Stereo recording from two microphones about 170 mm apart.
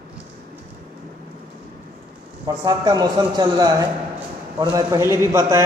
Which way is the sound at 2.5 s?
20° right (ahead or behind).